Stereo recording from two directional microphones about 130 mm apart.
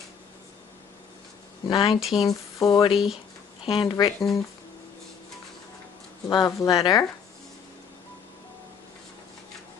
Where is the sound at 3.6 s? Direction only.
45° left (ahead or behind).